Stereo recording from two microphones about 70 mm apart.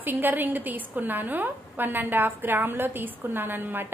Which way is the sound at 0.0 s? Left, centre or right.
Right.